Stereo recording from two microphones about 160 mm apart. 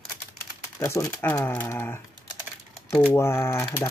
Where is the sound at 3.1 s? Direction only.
15° left (ahead or behind).